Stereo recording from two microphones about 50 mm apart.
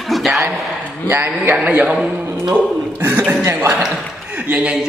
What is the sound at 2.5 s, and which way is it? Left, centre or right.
Speech, right.